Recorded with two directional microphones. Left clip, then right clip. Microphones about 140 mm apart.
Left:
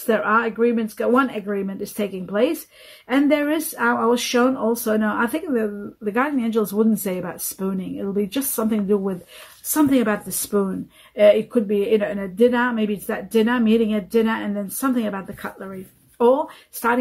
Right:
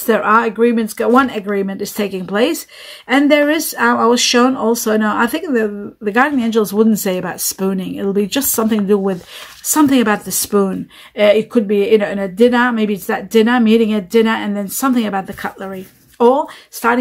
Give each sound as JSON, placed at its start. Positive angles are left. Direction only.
{"t": 0.0, "sound": "a woman's voice", "side_deg": -35}